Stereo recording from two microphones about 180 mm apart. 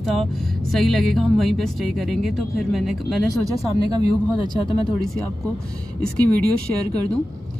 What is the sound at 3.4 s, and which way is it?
Speech, 15° right (ahead or behind).